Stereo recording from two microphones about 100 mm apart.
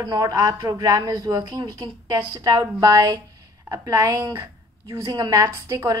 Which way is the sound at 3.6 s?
30° right (ahead or behind).